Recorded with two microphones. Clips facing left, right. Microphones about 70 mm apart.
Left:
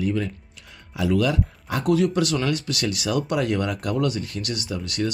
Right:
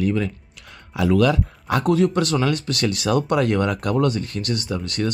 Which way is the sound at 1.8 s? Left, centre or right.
Right.